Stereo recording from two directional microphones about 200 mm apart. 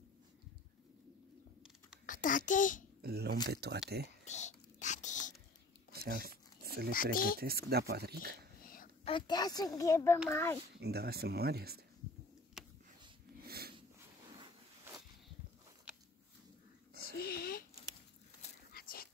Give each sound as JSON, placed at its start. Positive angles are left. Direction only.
{"t": 2.0, "sound": "a child's voice", "side_deg": 40}
{"t": 3.0, "sound": "speech", "side_deg": -50}
{"t": 4.2, "sound": "whispering", "side_deg": 35}
{"t": 5.9, "sound": "zipper", "side_deg": -50}
{"t": 6.9, "sound": "speech", "side_deg": 45}
{"t": 7.3, "sound": "speech", "side_deg": -50}
{"t": 9.0, "sound": "a woman's voice", "side_deg": 25}
{"t": 10.7, "sound": "speech", "side_deg": -55}
{"t": 12.6, "sound": "a sound", "side_deg": 0}
{"t": 13.5, "sound": "a sound", "side_deg": -50}
{"t": 17.2, "sound": "a sound", "side_deg": 50}
{"t": 18.7, "sound": "dog", "side_deg": 50}